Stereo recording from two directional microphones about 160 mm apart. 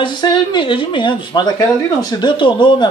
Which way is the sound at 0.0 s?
30° left (ahead or behind).